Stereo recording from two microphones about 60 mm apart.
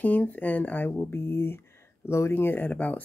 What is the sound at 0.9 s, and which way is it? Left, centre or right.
Speech, left.